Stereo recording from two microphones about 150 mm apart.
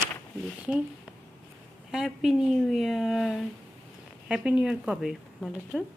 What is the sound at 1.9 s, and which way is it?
Speech, centre (ahead or behind).